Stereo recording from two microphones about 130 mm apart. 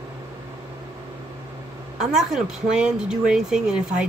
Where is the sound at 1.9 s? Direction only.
5° right (ahead or behind).